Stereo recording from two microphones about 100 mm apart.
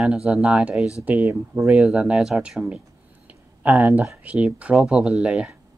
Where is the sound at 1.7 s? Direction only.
5° right (ahead or behind).